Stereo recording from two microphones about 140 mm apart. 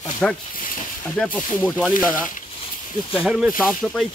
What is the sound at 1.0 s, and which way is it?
Speech, 10° left (ahead or behind).